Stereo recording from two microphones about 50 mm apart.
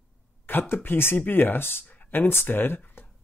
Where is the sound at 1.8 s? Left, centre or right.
Left.